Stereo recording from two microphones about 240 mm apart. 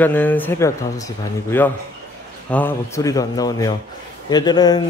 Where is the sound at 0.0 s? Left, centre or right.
Centre.